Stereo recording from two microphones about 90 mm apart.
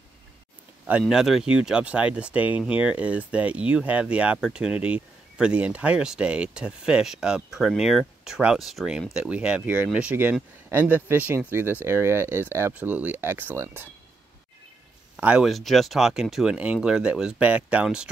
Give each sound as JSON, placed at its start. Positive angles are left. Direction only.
{"t": 1.0, "sound": "speech", "side_deg": -5}
{"t": 15.1, "sound": "speech", "side_deg": -15}
{"t": 15.4, "sound": "speech", "side_deg": 0}